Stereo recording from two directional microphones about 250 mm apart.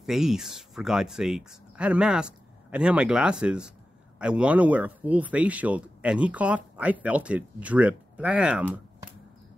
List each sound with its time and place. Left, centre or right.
0.0 s speech: centre